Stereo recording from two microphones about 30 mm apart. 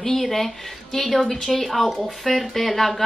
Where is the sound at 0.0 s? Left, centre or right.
Centre.